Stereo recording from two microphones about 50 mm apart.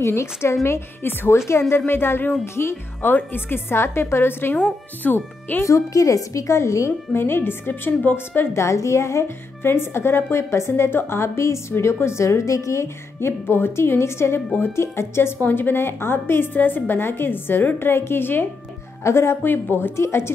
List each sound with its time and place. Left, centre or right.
0.0 s speech: left
0.7 s a woman's voice: left
2.4 s speech: left
3.1 s a woman's voice: left
5.0 s speech: left
5.7 s a woman's voice: left
7.2 s a woman's voice: left
8.5 s a woman's voice: left
9.6 s a woman's voice: left
10.9 s speech: left
11.7 s a woman's voice: left
19.0 s speech: left
19.4 s a woman's voice: left
20.0 s speech: left